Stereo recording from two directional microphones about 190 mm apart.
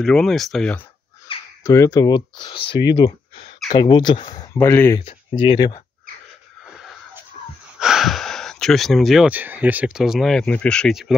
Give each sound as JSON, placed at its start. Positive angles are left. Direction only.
{"t": 0.0, "sound": "speech", "side_deg": 0}
{"t": 1.6, "sound": "speech", "side_deg": 15}
{"t": 7.8, "sound": "speech", "side_deg": 0}